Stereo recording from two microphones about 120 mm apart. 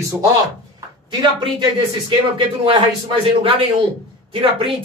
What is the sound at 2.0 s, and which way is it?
Speech, 45° right (ahead or behind).